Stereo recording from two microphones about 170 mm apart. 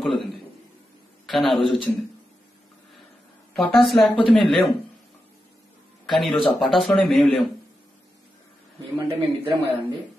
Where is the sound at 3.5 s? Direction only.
Centre (ahead or behind).